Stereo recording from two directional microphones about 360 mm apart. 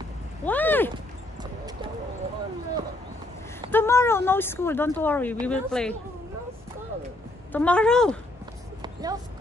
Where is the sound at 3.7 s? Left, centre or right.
Centre.